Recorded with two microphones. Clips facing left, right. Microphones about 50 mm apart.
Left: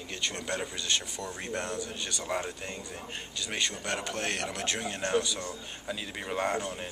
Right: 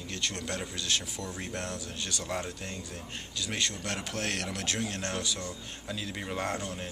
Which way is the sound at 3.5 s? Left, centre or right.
Centre.